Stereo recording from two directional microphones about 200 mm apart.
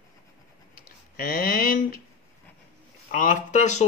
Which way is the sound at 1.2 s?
45° left (ahead or behind).